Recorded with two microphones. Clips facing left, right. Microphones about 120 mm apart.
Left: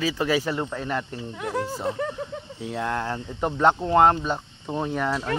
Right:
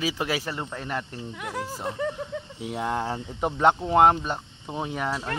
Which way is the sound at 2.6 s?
15° right (ahead or behind).